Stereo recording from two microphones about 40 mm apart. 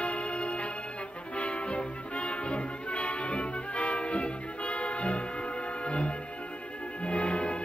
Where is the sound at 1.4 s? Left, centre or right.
Left.